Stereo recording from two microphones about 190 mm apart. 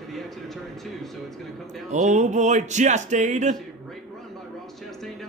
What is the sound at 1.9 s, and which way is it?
Speech, 40° right (ahead or behind).